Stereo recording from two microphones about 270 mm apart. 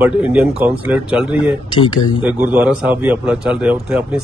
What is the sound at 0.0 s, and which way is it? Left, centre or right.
A man's voice, centre.